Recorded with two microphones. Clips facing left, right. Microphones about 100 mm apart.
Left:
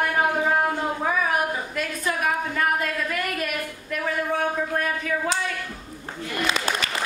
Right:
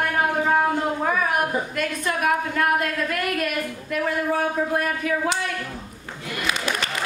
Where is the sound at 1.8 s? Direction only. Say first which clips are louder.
Left 1 dB; centre (ahead or behind).